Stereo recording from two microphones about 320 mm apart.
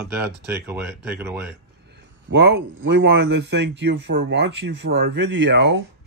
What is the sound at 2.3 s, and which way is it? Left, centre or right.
Speech, right.